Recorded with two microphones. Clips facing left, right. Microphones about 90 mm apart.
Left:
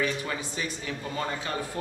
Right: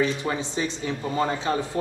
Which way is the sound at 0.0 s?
25° right (ahead or behind).